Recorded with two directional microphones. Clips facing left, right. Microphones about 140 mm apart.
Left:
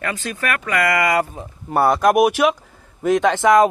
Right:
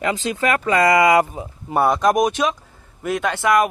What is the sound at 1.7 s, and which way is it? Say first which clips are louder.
Speech: left 1 dB; 5° left (ahead or behind).